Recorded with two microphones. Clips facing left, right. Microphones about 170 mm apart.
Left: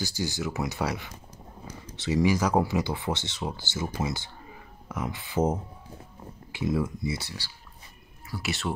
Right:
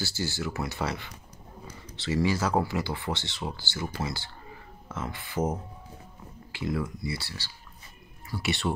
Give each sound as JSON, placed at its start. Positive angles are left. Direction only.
{"t": 0.0, "sound": "speech", "side_deg": 15}
{"t": 8.3, "sound": "speech", "side_deg": 0}